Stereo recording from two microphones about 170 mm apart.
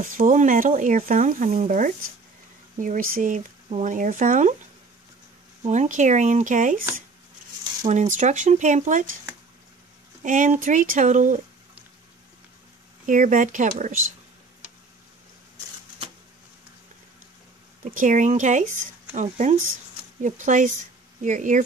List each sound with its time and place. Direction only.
0.0 s speech: 50° right (ahead or behind)
5.6 s speech: 45° right (ahead or behind)
7.9 s speech: 45° right (ahead or behind)
10.2 s speech: 50° right (ahead or behind)
13.0 s speech: 50° right (ahead or behind)
17.8 s speech: 50° right (ahead or behind)